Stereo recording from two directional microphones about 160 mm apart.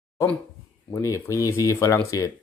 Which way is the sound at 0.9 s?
15° left (ahead or behind).